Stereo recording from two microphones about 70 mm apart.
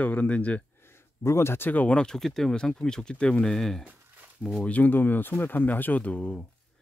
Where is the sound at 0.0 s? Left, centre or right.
Left.